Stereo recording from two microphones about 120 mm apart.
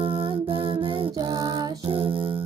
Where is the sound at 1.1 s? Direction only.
35° right (ahead or behind).